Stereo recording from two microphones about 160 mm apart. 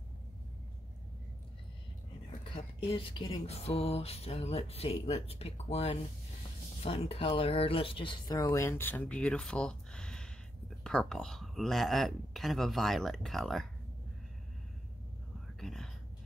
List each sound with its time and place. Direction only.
2.5 s speech: 35° left (ahead or behind)
8.4 s speech: 20° left (ahead or behind); by 13.7 s centre (ahead or behind)
15.6 s whispering: 5° left (ahead or behind)